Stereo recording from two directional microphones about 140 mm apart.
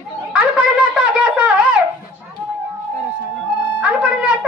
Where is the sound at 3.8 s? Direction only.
10° right (ahead or behind).